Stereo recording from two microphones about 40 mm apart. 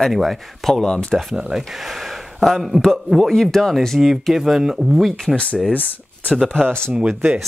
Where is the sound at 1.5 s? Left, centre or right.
Centre.